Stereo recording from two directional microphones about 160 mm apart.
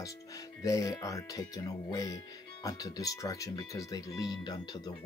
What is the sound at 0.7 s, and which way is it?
Speech, 20° left (ahead or behind).